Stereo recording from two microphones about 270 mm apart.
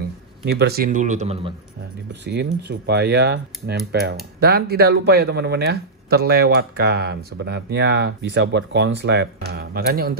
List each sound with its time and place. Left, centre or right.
0.5 s speech: right
2.2 s speech: right